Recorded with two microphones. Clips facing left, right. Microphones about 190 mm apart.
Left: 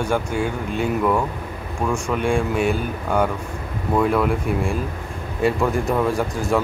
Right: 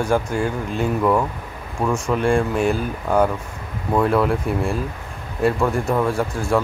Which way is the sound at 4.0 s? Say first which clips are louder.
Right 1 dB; centre (ahead or behind).